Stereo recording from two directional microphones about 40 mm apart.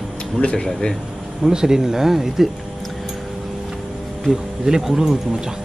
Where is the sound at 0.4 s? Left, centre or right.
Left.